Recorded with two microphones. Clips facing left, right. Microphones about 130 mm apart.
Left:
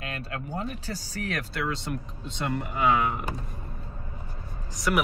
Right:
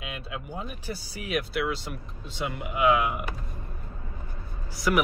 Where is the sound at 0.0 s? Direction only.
10° right (ahead or behind).